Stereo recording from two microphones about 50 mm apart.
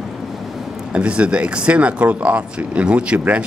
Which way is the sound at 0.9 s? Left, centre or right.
Right.